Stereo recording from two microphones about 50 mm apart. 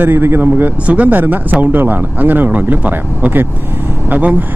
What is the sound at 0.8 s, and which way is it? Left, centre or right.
Speech, right.